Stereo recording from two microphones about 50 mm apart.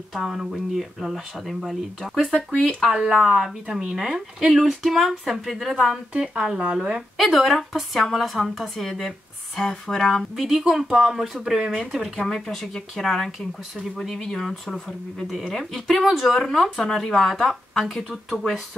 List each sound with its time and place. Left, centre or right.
0.1 s a woman's voice: centre
2.8 s a woman's voice: centre
6.1 s a woman's voice: centre
7.2 s speech: centre
10.3 s a woman's voice: centre
16.3 s speech: centre